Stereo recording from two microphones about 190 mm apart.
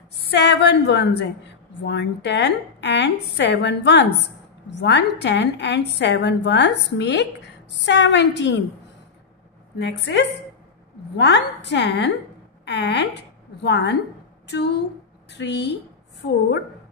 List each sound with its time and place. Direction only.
0.2 s a woman's voice: 60° left (ahead or behind)
9.8 s a woman's voice: 65° left (ahead or behind)